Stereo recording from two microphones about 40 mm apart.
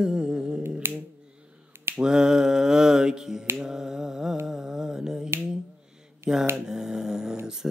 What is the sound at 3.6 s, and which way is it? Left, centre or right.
Finger snapping, centre.